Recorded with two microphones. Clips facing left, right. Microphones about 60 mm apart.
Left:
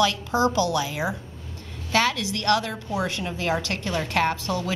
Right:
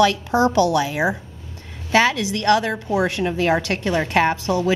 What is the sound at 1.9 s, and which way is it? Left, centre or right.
A woman's voice, right.